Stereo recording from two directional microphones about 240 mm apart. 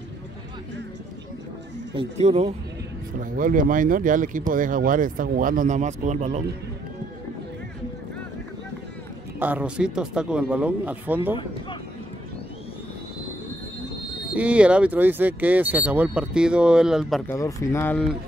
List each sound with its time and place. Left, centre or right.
2.0 s speech: right
9.4 s speech: centre
14.3 s speech: centre
17.4 s speech: centre